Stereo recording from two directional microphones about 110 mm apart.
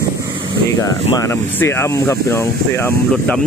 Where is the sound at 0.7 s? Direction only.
30° left (ahead or behind).